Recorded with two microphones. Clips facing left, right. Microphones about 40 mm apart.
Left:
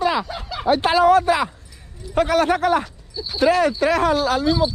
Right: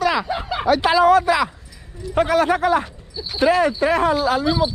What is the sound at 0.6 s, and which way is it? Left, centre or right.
Speech, right.